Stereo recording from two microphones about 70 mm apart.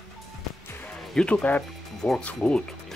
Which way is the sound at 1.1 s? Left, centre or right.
Centre.